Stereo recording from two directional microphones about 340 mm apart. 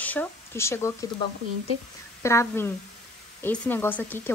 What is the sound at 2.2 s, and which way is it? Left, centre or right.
Speech, centre.